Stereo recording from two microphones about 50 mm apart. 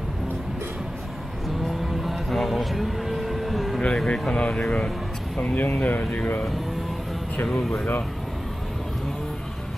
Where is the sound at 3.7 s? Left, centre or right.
Centre.